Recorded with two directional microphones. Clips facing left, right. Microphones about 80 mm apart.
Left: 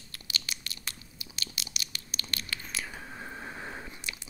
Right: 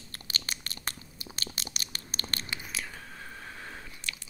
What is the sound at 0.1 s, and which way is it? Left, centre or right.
Tearing, right.